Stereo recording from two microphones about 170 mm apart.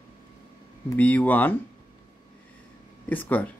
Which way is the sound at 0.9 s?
10° left (ahead or behind).